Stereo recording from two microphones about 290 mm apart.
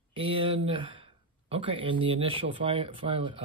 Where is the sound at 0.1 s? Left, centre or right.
Centre.